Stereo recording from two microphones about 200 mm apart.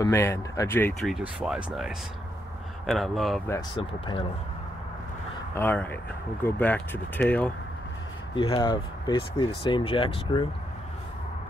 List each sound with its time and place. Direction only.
0.0 s speech: 10° left (ahead or behind)
3.7 s speech: 25° left (ahead or behind)
5.5 s speech: 10° left (ahead or behind)
8.4 s speech: 25° left (ahead or behind)